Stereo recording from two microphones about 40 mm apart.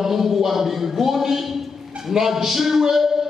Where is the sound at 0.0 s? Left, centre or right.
Centre.